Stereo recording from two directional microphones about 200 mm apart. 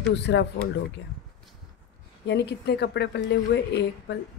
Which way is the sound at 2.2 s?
55° left (ahead or behind).